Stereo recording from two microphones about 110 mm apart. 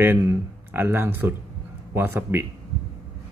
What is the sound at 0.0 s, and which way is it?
Speech, 20° right (ahead or behind).